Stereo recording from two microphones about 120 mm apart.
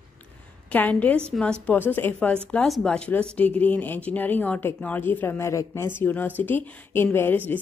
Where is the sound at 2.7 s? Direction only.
5° left (ahead or behind).